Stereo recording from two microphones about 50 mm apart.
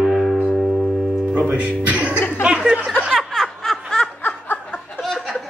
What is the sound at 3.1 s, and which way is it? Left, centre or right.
Snicker, centre.